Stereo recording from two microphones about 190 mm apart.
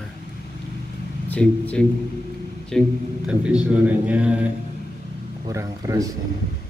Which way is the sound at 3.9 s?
5° right (ahead or behind).